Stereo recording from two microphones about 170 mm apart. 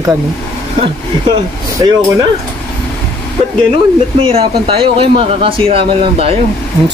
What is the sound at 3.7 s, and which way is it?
Speech, 30° right (ahead or behind).